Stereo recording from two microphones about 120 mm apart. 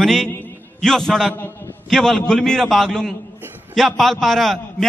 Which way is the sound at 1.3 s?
15° left (ahead or behind).